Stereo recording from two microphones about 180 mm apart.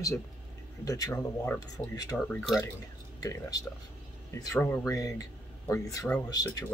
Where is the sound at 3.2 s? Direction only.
20° left (ahead or behind).